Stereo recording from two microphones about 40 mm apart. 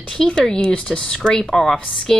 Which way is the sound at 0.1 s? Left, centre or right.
Left.